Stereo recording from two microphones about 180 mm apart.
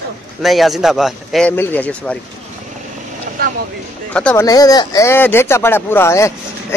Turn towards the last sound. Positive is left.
turn(degrees=15)  # may be behind; listen again after turning